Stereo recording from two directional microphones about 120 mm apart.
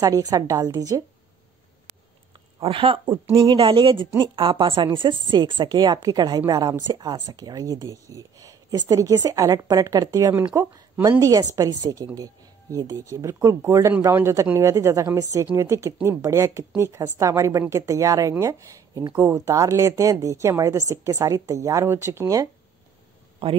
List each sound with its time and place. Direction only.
0.0 s a woman's voice: 30° right (ahead or behind)
2.6 s a woman's voice: 50° right (ahead or behind); by 22.5 s 25° right (ahead or behind)